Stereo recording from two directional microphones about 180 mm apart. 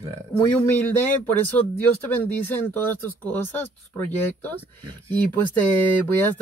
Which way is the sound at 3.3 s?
10° left (ahead or behind).